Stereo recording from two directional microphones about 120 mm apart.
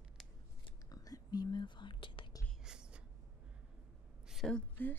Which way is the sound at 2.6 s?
5° right (ahead or behind).